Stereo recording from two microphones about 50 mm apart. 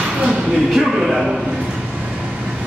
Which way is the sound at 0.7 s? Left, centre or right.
Centre.